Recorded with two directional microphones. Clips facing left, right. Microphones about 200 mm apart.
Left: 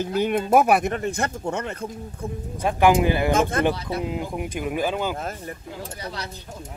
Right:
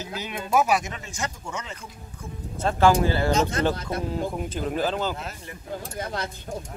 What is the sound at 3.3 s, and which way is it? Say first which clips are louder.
Speech: left 2 dB; 55° left (ahead or behind).